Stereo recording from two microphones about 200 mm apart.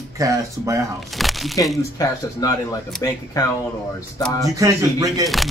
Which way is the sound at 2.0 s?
20° left (ahead or behind).